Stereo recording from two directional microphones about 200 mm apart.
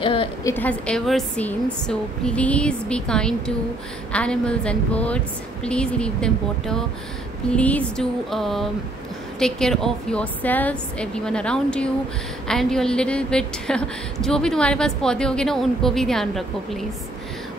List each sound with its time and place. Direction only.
0.0 s a woman's voice: 25° left (ahead or behind)
0.5 s a woman's voice: 10° left (ahead or behind)